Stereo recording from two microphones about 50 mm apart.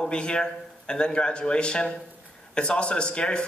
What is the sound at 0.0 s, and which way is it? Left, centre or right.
A man's voice, centre.